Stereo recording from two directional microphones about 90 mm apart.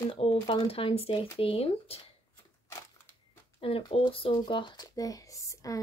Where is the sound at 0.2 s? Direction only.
75° left (ahead or behind).